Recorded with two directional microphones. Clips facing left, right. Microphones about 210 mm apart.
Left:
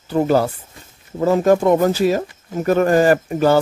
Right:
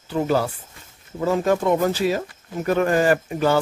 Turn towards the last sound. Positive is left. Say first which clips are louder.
# left 4 dB
turn(degrees=40)  # may be behind; listen again after turning